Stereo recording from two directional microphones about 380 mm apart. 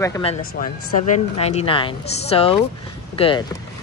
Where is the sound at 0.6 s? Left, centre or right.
Left.